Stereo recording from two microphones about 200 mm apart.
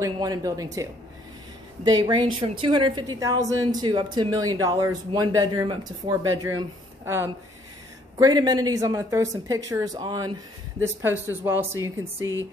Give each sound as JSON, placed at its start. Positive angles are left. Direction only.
{"t": 0.0, "sound": "a woman's voice", "side_deg": -15}
{"t": 1.9, "sound": "a woman's voice", "side_deg": -20}
{"t": 8.2, "sound": "a woman's voice", "side_deg": -20}